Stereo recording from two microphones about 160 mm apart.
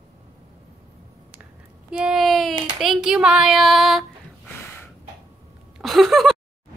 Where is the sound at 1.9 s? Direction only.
5° right (ahead or behind).